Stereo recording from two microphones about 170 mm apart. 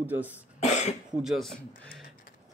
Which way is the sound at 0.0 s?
10° right (ahead or behind).